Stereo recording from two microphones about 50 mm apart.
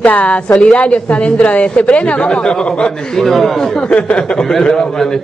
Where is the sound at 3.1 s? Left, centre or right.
Centre.